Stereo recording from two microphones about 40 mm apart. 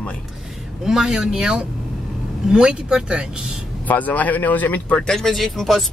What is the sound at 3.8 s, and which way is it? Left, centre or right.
Speech, left.